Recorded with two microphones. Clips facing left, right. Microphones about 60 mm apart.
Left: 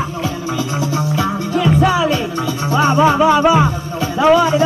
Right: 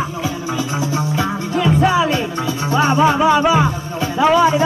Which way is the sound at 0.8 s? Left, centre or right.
Right.